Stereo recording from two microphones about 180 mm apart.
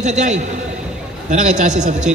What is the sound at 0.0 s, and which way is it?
A man's voice, 40° right (ahead or behind).